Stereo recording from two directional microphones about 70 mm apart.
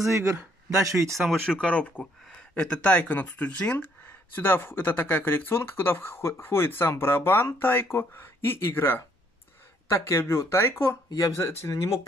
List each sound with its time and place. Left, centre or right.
0.1 s speech: right
1.6 s speech: centre
4.4 s speech: left
11.1 s speech: left
11.7 s speech: left